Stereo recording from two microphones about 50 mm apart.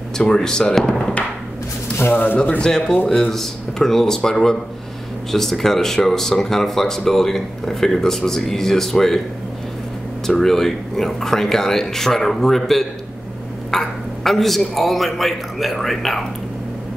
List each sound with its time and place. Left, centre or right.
0.2 s speech: centre
2.6 s speech: centre
10.2 s speech: centre
13.7 s a sound: centre
14.8 s speech: centre